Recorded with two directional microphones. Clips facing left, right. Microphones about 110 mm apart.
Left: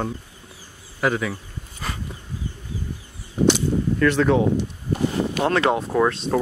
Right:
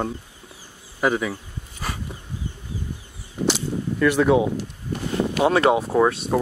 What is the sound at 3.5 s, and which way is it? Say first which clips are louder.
Cap gun: left 4 dB; 5° right (ahead or behind).